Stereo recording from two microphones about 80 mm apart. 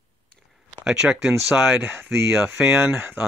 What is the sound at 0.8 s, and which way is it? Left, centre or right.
Speech, centre.